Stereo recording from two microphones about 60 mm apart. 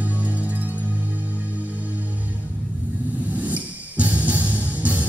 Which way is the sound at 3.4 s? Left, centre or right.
Right.